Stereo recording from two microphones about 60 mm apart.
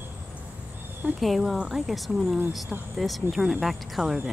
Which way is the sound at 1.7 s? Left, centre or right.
Centre.